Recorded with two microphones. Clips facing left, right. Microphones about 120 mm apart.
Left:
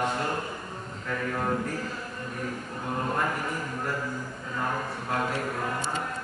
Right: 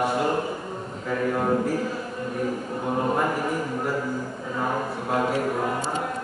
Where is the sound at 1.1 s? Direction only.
15° right (ahead or behind).